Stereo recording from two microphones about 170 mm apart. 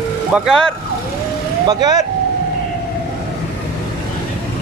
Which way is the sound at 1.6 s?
25° right (ahead or behind).